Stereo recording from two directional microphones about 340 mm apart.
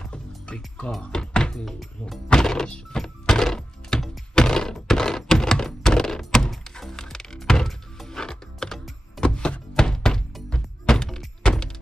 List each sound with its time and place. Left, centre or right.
0.0 s music: centre